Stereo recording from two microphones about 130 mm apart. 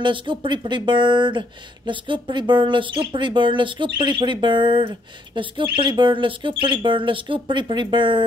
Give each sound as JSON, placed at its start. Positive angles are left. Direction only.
{"t": 0.0, "sound": "speech", "side_deg": -40}